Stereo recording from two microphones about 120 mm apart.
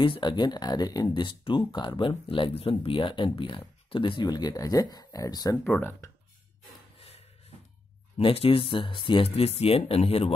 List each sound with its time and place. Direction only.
0.0 s speech: 40° left (ahead or behind)
5.6 s speech: 15° left (ahead or behind)
8.2 s speech: 50° left (ahead or behind)